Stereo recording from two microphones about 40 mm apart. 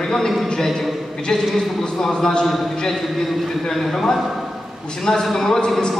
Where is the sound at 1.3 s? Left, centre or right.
Centre.